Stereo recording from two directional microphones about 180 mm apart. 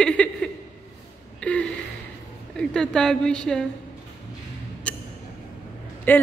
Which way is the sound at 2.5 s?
5° left (ahead or behind).